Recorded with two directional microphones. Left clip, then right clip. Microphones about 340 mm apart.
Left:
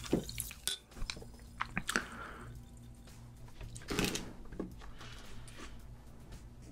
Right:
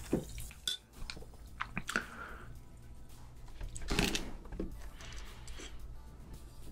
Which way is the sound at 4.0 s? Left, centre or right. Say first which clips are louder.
Right 2 dB; right.